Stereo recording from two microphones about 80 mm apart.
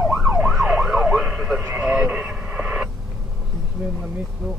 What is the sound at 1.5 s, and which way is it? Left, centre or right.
Radio, centre.